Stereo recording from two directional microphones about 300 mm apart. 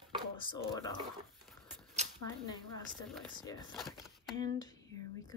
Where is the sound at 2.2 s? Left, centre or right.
Centre.